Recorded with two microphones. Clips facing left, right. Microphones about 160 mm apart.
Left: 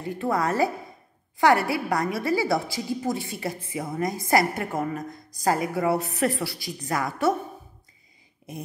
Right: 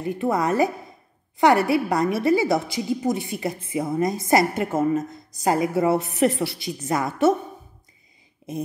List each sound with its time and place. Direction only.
0.0 s a woman's voice: 20° right (ahead or behind)